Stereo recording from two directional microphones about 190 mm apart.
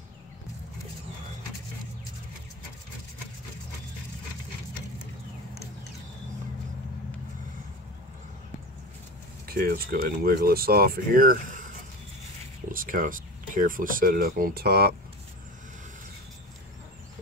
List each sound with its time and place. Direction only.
9.5 s speech: 50° right (ahead or behind)